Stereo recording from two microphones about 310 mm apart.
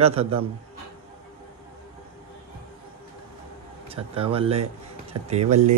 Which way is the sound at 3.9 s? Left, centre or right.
Centre.